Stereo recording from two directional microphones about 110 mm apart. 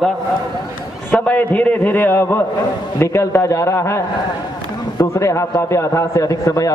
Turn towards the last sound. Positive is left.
turn(degrees=30)  # may be behind; listen again after turning